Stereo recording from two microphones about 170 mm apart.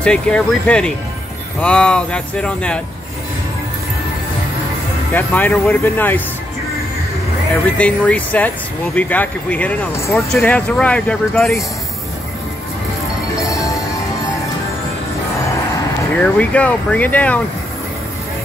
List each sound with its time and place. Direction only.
0.0 s speech: 5° left (ahead or behind)
5.1 s speech: 10° left (ahead or behind)
7.6 s speech: 10° left (ahead or behind)
16.2 s speech: 10° left (ahead or behind)